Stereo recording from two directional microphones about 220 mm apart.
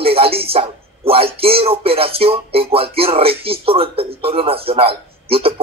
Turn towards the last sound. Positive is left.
turn(degrees=-25)  # may be behind; listen again after turning